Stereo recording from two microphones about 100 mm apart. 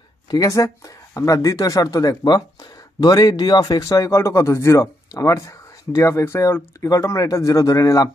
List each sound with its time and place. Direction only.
0.3 s speech: 35° left (ahead or behind)